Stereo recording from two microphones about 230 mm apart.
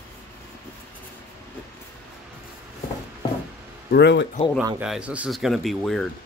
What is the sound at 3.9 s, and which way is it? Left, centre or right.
Speech, left.